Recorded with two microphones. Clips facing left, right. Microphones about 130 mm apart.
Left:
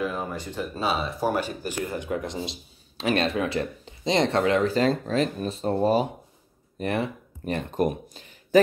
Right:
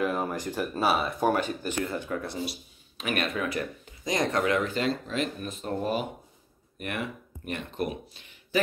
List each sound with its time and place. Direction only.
0.1 s speech: 10° right (ahead or behind)
1.3 s speech: 10° left (ahead or behind)
3.0 s speech: 30° left (ahead or behind)